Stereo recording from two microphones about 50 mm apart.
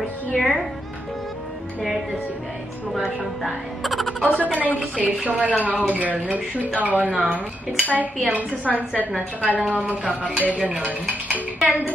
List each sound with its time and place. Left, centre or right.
0.4 s speech: centre
3.4 s speech: centre
4.3 s speech: right